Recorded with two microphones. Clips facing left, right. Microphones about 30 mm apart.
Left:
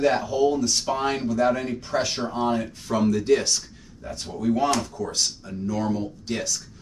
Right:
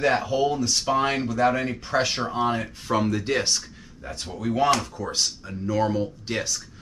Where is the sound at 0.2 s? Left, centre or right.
Centre.